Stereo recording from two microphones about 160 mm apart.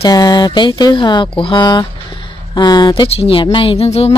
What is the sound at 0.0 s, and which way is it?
Speech, 25° left (ahead or behind).